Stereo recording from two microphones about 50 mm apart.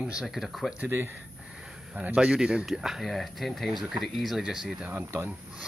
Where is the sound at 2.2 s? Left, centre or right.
Centre.